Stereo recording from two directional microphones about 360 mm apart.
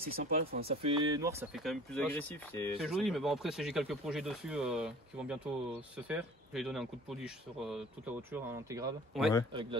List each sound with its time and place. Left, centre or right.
0.2 s speech: centre
8.3 s speech: centre
9.5 s a man's voice: centre